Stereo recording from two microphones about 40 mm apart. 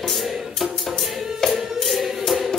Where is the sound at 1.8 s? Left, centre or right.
Centre.